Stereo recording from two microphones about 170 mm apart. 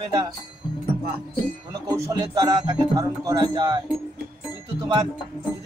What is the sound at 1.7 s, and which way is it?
Speech, 25° right (ahead or behind).